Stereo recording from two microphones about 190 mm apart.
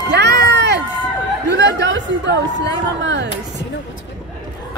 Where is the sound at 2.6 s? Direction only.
70° right (ahead or behind).